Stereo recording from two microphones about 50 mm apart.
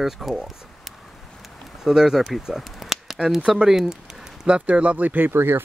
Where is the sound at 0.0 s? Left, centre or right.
Centre.